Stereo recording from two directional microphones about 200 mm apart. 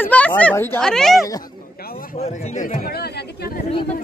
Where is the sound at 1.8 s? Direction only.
45° left (ahead or behind).